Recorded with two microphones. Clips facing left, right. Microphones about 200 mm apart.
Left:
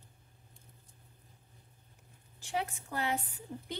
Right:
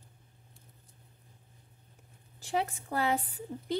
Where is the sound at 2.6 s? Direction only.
35° right (ahead or behind).